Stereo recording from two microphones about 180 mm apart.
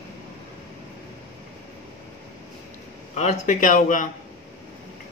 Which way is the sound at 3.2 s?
40° left (ahead or behind).